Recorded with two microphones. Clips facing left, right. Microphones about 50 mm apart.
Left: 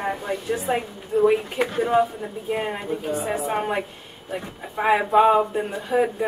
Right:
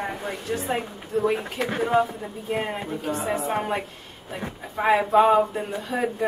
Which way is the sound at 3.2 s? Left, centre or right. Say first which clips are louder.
Left 1 dB; centre.